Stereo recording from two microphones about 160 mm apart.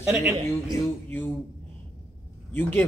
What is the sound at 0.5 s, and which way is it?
Speech, 15° left (ahead or behind).